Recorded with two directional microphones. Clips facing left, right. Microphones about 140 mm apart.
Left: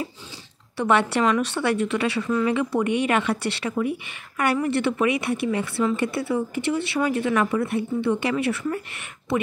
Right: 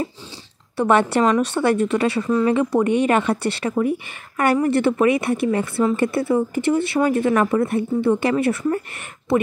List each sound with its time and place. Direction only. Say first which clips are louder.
0.7 s a woman's voice: right 4 dB; 45° right (ahead or behind)